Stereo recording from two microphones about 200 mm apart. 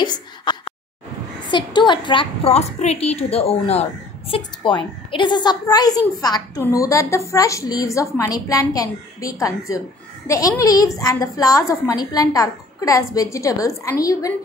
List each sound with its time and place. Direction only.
0.0 s a woman's voice: 20° left (ahead or behind)